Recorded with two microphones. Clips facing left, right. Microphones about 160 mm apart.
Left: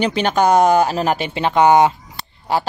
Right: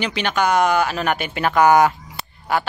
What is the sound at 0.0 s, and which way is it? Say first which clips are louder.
Speech: left 5 dB; 40° left (ahead or behind).